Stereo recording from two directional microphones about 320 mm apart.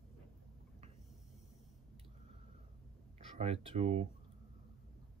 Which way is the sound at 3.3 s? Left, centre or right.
Centre.